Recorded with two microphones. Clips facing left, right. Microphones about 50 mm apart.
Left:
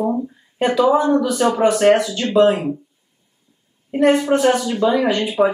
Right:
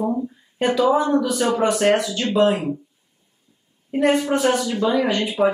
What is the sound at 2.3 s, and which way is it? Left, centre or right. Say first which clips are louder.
Speech: left 4 dB; centre.